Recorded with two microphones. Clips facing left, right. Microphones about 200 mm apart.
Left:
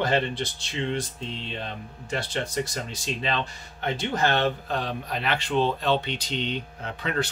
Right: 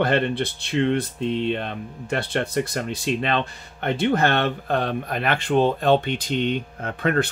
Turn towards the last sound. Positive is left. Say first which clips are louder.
# right 6 dB
turn(degrees=-55)  # may be behind; listen again after turning